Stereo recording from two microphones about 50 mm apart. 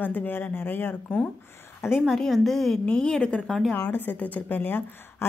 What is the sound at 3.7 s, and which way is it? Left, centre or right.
Speech, left.